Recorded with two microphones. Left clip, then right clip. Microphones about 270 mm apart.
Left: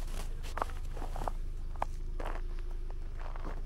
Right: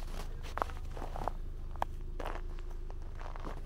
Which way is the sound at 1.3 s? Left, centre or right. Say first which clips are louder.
Even; right.